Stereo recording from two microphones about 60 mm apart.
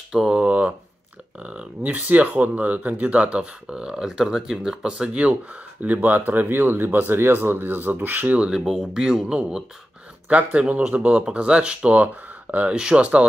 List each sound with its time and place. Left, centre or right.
0.1 s speech: centre; by 8.4 s right
8.4 s speech: centre
10.2 s speech: right